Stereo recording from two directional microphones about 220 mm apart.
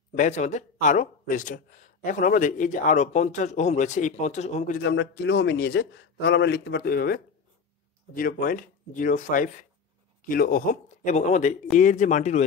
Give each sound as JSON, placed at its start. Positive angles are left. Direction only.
{"t": 0.2, "sound": "speech", "side_deg": 35}
{"t": 4.8, "sound": "a man's voice", "side_deg": 50}